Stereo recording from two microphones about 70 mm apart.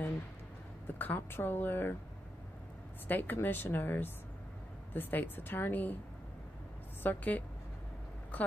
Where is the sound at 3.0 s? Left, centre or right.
Left.